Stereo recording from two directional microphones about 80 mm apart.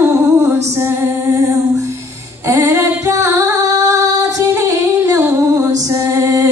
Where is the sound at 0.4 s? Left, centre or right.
Right.